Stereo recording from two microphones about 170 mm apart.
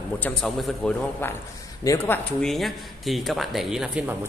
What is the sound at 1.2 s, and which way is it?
Speech, 15° left (ahead or behind).